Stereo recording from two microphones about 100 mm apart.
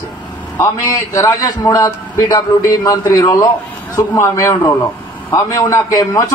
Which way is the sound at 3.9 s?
30° left (ahead or behind).